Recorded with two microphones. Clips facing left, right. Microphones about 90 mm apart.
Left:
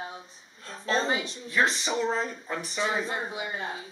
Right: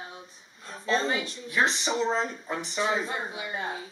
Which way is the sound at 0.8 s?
20° left (ahead or behind).